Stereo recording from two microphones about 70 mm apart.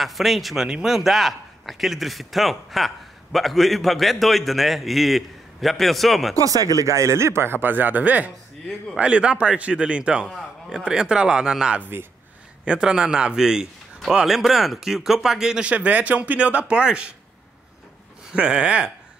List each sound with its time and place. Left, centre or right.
0.0 s a man's voice: centre
6.3 s a man's voice: right; by 11.8 s centre
11.8 s speech: right
12.6 s a man's voice: centre
18.3 s a man's voice: centre